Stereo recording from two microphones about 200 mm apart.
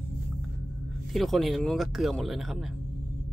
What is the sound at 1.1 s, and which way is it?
Speech, centre (ahead or behind).